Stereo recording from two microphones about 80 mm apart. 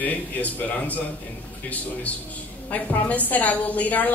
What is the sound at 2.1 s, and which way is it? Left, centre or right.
A man's voice, centre.